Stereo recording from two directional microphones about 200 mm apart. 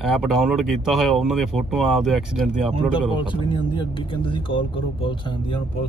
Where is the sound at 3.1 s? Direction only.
25° left (ahead or behind).